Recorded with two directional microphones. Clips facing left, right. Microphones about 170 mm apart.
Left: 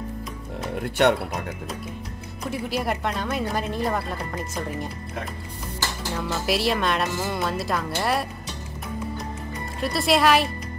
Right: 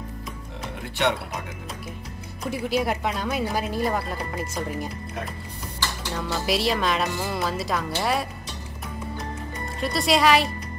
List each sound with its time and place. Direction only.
0.8 s speech: 50° left (ahead or behind)
2.4 s speech: centre (ahead or behind)
6.1 s speech: centre (ahead or behind)
9.8 s speech: centre (ahead or behind)